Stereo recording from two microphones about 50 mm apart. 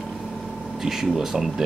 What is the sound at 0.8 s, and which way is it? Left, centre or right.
Speech, centre.